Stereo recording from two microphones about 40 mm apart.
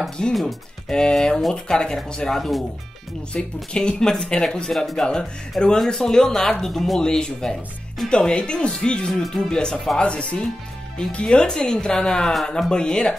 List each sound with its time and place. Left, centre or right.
0.3 s speech: centre
0.8 s speech: centre
2.3 s speech: centre
3.3 s speech: left
4.6 s speech: centre
4.9 s speech: centre
7.0 s speech: centre
9.1 s speech: centre
9.5 s speech: centre